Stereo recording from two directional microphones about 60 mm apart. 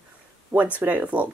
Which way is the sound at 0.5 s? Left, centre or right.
Right.